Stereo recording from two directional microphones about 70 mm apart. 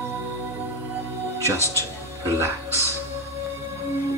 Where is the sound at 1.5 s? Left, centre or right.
Left.